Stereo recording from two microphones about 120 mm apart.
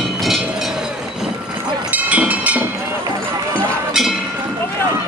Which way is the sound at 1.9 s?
10° right (ahead or behind).